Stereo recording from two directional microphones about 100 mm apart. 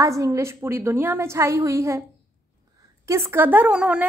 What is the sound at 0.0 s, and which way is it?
A woman's voice, 30° right (ahead or behind).